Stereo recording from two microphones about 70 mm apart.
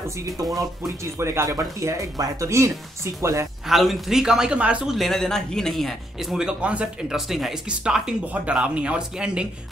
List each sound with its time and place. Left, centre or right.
0.6 s speech: right
3.6 s a man's voice: centre
4.8 s speech: centre
6.3 s a man's voice: centre
7.1 s a man's voice: centre